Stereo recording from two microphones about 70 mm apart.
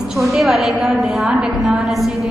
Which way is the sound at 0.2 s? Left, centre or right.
Centre.